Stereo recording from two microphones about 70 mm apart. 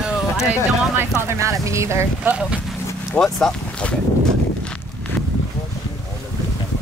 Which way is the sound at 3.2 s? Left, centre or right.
Centre.